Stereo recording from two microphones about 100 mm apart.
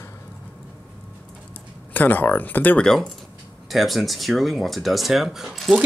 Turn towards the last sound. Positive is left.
turn(degrees=0)  # may be behind; listen again after turning